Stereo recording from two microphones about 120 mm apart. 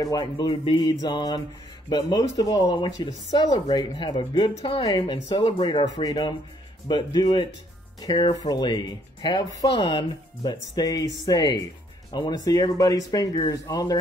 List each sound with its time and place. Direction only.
0.0 s speech: 35° left (ahead or behind)